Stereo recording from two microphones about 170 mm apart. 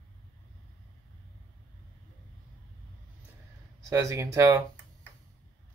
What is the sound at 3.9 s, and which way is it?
Speech, 20° right (ahead or behind).